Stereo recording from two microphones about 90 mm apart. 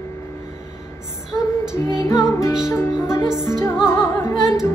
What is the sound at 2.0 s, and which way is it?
Music, 40° left (ahead or behind).